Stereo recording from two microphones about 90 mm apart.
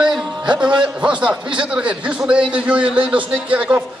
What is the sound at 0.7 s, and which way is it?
A man's voice, 10° right (ahead or behind).